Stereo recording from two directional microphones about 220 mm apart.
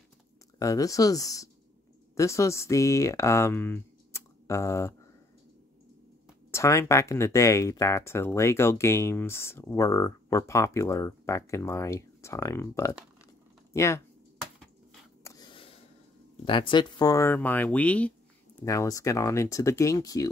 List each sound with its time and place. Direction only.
0.6 s speech: 15° left (ahead or behind)
6.5 s speech: 15° left (ahead or behind)
15.2 s a sound: 20° left (ahead or behind)
16.4 s speech: 25° left (ahead or behind)